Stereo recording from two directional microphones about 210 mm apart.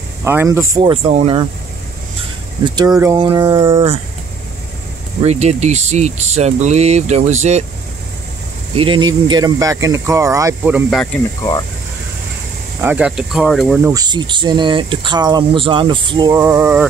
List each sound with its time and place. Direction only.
0.2 s speech: 10° right (ahead or behind)
2.6 s speech: 20° right (ahead or behind)
5.2 s speech: 30° right (ahead or behind)
8.7 s speech: 25° right (ahead or behind)
12.8 s speech: 5° right (ahead or behind)
13.9 s speech: 20° right (ahead or behind)